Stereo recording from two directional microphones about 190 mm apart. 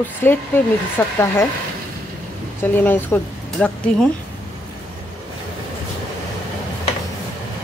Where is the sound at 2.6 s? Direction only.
10° left (ahead or behind).